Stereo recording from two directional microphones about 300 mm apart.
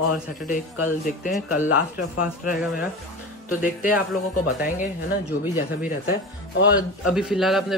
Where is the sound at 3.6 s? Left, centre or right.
Left.